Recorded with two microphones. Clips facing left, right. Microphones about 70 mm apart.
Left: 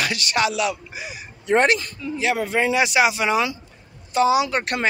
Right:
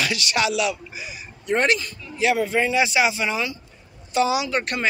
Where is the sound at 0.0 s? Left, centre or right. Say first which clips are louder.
Left 1 dB; left.